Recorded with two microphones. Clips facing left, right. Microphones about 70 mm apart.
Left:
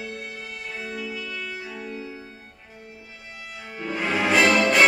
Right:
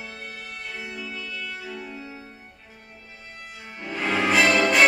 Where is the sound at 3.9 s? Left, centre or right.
Centre.